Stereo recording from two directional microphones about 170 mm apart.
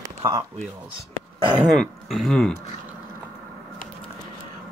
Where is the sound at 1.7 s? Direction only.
Centre (ahead or behind).